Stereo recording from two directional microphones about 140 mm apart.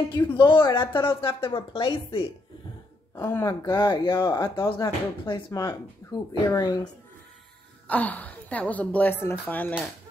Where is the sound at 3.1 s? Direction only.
20° left (ahead or behind).